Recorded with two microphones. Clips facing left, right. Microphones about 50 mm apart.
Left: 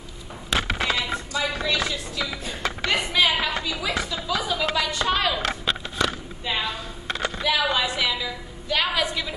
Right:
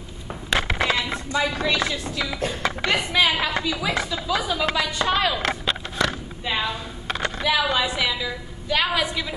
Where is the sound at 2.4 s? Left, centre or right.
Right.